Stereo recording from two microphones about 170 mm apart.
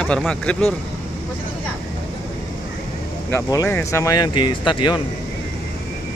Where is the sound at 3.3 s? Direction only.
15° left (ahead or behind).